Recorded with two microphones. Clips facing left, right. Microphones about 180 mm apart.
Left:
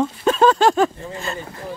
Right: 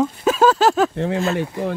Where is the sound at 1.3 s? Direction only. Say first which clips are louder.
Right 8 dB; 75° right (ahead or behind).